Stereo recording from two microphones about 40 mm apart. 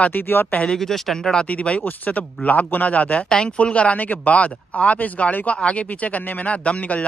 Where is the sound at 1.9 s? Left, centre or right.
Left.